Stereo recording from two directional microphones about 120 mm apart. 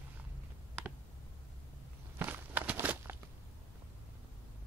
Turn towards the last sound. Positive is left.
turn(degrees=-15)  # may be behind; listen again after turning